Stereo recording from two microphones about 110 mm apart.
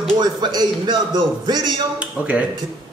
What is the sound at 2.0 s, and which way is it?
Speech, 10° right (ahead or behind).